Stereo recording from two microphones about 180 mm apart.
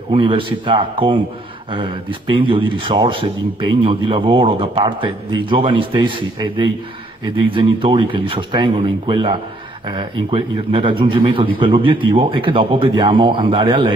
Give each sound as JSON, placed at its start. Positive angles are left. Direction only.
{"t": 0.1, "sound": "a man's voice", "side_deg": -30}